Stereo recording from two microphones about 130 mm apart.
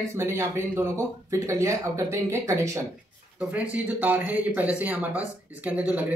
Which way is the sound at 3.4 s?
10° right (ahead or behind).